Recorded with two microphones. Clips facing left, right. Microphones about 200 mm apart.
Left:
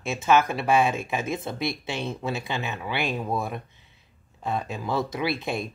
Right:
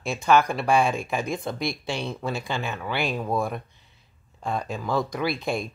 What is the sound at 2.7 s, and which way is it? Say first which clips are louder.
Speech: right 1 dB; 20° left (ahead or behind).